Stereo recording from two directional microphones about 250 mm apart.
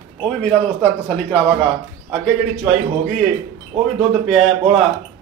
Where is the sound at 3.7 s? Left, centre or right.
Right.